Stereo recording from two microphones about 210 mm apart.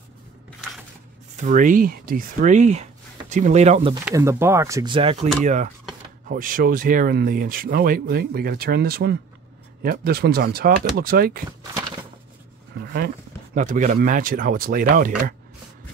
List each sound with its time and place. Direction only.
1.3 s speech: 35° right (ahead or behind)
4.1 s speech: 15° right (ahead or behind); by 11.4 s 45° right (ahead or behind)
13.6 s speech: 40° right (ahead or behind)